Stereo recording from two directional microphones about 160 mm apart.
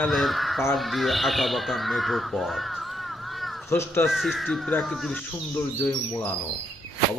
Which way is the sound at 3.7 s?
15° left (ahead or behind).